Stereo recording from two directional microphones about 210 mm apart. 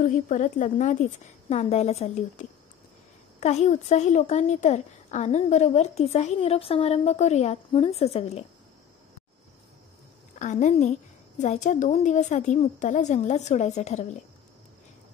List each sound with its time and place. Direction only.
0.0 s speech: 35° left (ahead or behind)
10.4 s speech: 35° left (ahead or behind)